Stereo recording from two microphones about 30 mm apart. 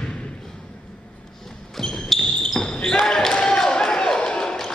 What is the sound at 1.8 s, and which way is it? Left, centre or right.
Basketball bounce, centre.